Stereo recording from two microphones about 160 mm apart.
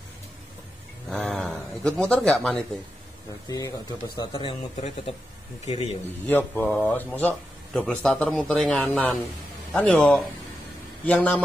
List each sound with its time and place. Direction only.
1.1 s a sound: centre (ahead or behind)
3.4 s a man's voice: 20° left (ahead or behind); by 5.9 s 40° left (ahead or behind)
6.2 s a man's voice: 10° left (ahead or behind)